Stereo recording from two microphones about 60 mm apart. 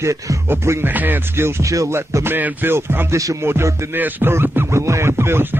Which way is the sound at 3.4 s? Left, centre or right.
Right.